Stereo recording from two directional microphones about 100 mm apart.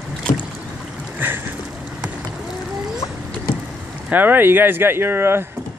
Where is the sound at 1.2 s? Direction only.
20° right (ahead or behind).